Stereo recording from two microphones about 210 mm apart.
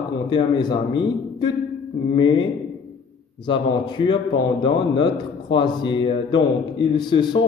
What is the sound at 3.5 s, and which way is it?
A man's voice, 20° left (ahead or behind).